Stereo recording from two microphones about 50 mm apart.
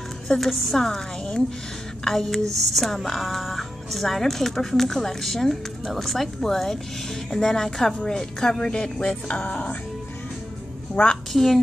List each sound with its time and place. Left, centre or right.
0.3 s a woman's voice: centre; by 9.4 s left
11.0 s a woman's voice: left
11.3 s speech: centre